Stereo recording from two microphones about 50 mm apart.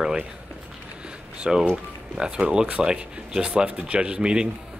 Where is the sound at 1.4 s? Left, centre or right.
Centre.